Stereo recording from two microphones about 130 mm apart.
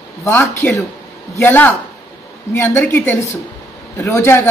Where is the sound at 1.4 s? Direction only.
15° left (ahead or behind).